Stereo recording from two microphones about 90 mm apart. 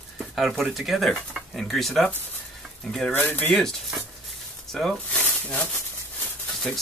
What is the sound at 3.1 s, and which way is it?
Speech, 20° left (ahead or behind).